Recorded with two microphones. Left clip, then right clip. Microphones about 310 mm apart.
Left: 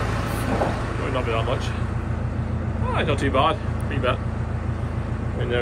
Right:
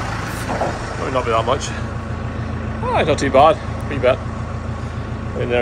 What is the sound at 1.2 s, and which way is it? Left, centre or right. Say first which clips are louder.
Speech: right 9 dB; centre.